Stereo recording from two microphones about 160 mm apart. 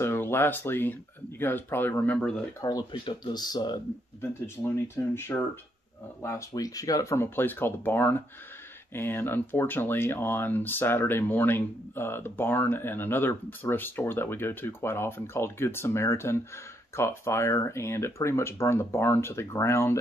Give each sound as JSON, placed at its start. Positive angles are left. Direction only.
{"t": 0.0, "sound": "speech", "side_deg": 15}
{"t": 2.6, "sound": "speech", "side_deg": 25}
{"t": 4.8, "sound": "speech", "side_deg": 15}